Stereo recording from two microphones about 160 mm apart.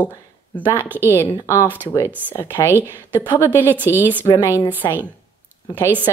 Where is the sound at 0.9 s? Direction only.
15° right (ahead or behind).